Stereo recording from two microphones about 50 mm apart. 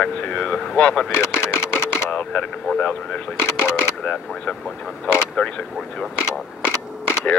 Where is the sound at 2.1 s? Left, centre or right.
Left.